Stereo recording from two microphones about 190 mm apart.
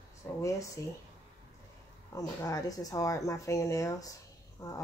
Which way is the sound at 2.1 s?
20° left (ahead or behind).